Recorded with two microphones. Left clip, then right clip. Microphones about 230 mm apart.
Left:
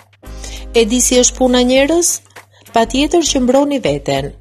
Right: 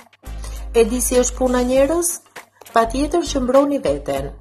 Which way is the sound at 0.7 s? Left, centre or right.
Left.